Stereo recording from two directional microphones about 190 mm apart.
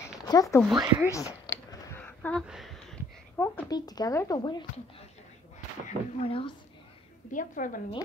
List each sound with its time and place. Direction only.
0.0 s a sound: 15° left (ahead or behind)
0.6 s speech: centre (ahead or behind)
1.1 s a sound: 15° left (ahead or behind)
3.6 s speech: 20° left (ahead or behind)
6.2 s speech: 30° left (ahead or behind)
7.3 s a woman's voice: 45° left (ahead or behind)